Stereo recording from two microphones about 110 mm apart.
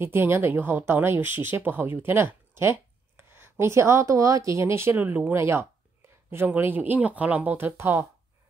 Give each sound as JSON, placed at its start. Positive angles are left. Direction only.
{"t": 0.0, "sound": "speech", "side_deg": -20}